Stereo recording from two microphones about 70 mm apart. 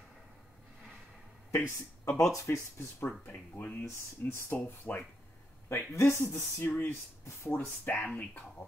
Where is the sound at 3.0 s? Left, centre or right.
Left.